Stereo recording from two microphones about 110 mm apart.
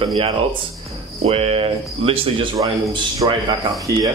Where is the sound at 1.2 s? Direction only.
65° right (ahead or behind).